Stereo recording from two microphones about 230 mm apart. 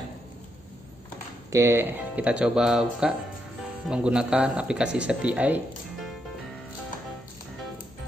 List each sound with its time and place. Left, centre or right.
1.5 s speech: centre